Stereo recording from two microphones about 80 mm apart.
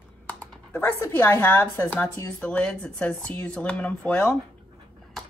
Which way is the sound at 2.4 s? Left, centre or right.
Centre.